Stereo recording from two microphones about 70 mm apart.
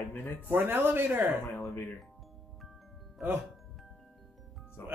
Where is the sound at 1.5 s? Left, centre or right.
Left.